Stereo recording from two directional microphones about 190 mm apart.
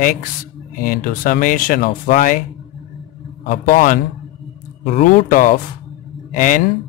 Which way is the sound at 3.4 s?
45° left (ahead or behind).